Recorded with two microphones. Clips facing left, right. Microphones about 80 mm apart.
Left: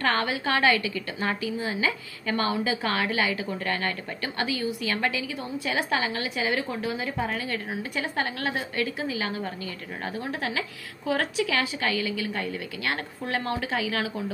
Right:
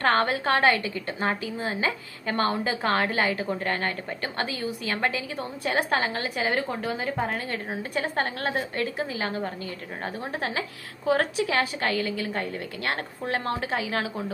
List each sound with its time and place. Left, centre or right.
0.0 s a woman's voice: right
5.6 s a woman's voice: right
11.6 s a woman's voice: right